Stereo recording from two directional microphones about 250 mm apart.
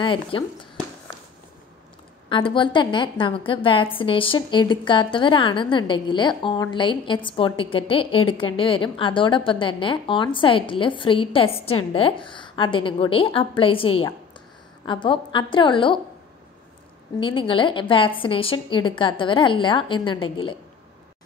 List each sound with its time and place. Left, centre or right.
0.0 s a woman's voice: centre
2.2 s a woman's voice: centre
17.2 s a woman's voice: left